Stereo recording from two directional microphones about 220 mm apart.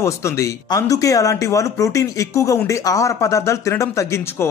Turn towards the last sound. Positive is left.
turn(degrees=15)  # may be behind; listen again after turning